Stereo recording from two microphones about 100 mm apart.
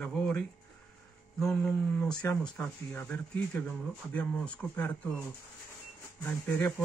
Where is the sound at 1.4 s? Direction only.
10° left (ahead or behind).